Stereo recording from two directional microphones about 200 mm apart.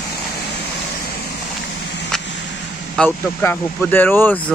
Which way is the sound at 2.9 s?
10° left (ahead or behind).